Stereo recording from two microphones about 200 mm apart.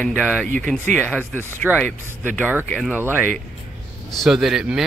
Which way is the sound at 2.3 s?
10° right (ahead or behind).